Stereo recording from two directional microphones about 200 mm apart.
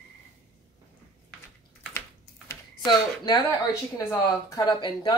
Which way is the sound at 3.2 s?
15° left (ahead or behind).